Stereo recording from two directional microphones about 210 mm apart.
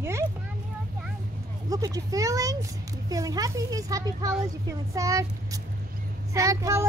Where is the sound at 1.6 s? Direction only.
15° right (ahead or behind).